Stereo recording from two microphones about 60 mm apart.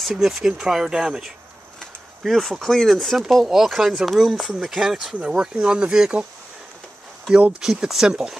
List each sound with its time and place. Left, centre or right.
0.0 s speech: centre
2.2 s speech: centre
5.2 s speech: centre
7.2 s speech: centre